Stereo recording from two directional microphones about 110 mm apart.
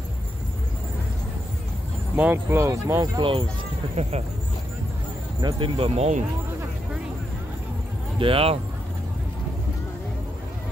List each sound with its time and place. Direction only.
2.1 s speech: 15° right (ahead or behind)
3.2 s speech: 55° right (ahead or behind)
5.4 s speech: 55° right (ahead or behind); by 6.2 s 85° right
8.2 s speech: 55° right (ahead or behind)